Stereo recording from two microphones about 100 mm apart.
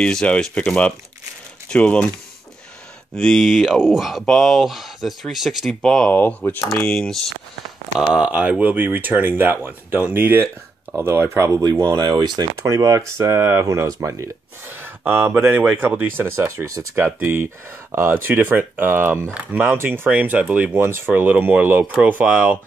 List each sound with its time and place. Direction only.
0.0 s speech: 10° left (ahead or behind)
3.2 s speech: 5° left (ahead or behind)
6.1 s speech: 20° left (ahead or behind)
6.6 s speech: 5° left (ahead or behind)
8.1 s speech: 10° right (ahead or behind); by 11.6 s 25° right (ahead or behind)
11.8 s speech: 50° right (ahead or behind)
12.6 s speech: 35° right (ahead or behind)
14.7 s speech: 20° right (ahead or behind)